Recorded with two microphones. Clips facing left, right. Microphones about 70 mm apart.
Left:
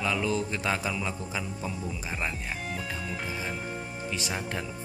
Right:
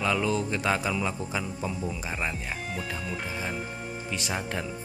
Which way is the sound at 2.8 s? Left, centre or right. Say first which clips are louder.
Right 1 dB; centre.